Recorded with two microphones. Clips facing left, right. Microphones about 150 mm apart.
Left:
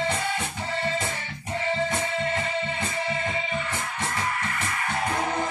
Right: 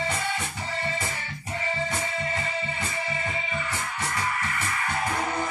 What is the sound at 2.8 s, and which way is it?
Music, 25° left (ahead or behind).